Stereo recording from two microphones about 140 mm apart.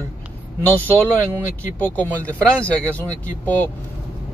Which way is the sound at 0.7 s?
10° left (ahead or behind).